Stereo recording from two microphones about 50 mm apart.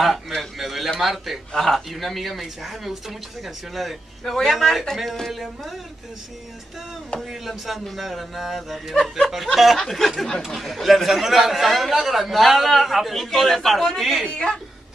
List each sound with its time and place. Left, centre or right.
0.0 s a sound: centre
1.0 s speech: centre
7.2 s speech: centre
14.2 s speech: centre